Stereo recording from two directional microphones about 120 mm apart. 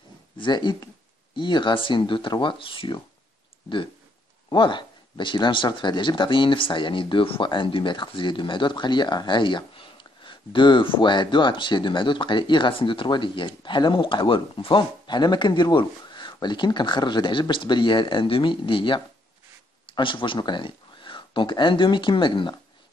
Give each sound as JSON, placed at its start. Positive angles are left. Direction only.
{"t": 0.4, "sound": "speech", "side_deg": 40}
{"t": 4.5, "sound": "speech", "side_deg": 40}